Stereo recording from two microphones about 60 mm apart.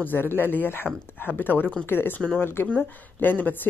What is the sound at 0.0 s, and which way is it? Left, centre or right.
Speech, left.